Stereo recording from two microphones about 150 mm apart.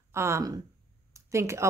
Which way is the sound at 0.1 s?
20° right (ahead or behind).